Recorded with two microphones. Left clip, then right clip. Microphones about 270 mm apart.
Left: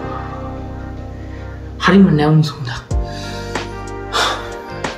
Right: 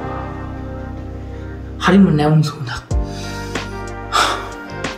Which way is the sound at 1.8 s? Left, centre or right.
Centre.